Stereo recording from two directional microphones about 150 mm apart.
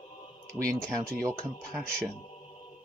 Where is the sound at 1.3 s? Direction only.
5° left (ahead or behind).